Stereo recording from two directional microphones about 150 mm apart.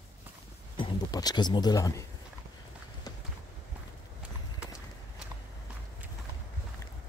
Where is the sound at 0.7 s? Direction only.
30° left (ahead or behind).